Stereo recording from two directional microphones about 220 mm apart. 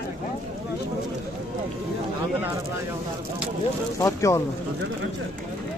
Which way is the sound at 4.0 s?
15° left (ahead or behind).